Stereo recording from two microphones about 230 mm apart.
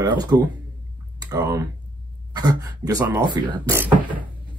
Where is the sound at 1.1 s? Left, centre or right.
Centre.